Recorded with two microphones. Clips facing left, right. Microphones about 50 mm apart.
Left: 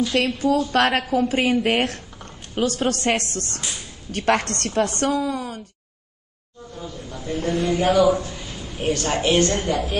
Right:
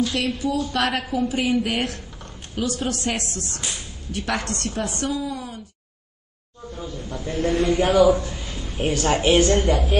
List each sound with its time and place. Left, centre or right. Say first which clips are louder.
0.4 s a woman's voice: left 4 dB; left
0.7 s speech: left 4 dB; left
2.2 s a sound: left 3 dB; left
2.9 s a woman's voice: left 4 dB; left
6.8 s a man's voice: right 2 dB; centre